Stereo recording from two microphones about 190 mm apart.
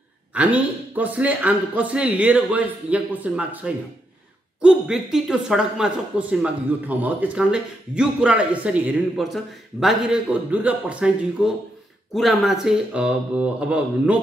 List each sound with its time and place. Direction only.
0.3 s a man's voice: 10° right (ahead or behind)